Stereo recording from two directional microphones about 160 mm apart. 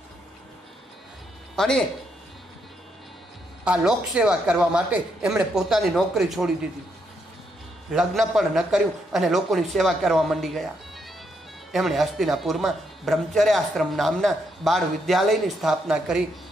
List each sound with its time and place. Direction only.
1.5 s speech: 5° left (ahead or behind)
3.6 s a man's voice: 5° right (ahead or behind)
7.9 s a man's voice: centre (ahead or behind)
11.7 s a man's voice: centre (ahead or behind)